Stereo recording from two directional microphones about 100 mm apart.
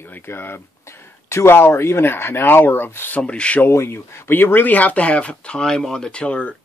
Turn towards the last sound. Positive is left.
turn(degrees=10)  # may be behind; listen again after turning